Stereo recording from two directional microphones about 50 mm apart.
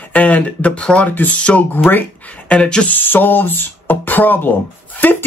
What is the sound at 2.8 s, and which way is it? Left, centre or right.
Speech, left.